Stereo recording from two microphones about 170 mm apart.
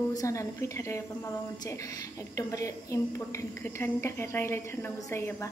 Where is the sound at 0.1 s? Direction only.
20° left (ahead or behind).